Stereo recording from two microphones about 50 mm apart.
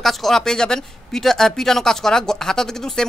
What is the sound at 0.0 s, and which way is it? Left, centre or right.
A woman's voice, centre.